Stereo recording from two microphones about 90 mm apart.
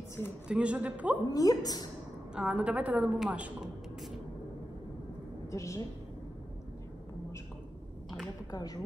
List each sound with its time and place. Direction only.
0.5 s a woman's voice: 10° right (ahead or behind)
1.3 s a woman's voice: 45° left (ahead or behind)
2.3 s a woman's voice: 10° right (ahead or behind)
5.5 s a woman's voice: 35° left (ahead or behind)
8.5 s a woman's voice: 45° left (ahead or behind)